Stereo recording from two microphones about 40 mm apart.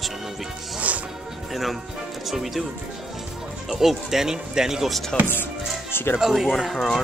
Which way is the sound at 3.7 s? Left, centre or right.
Centre.